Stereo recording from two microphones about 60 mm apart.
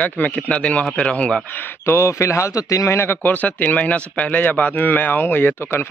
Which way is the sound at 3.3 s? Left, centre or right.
Left.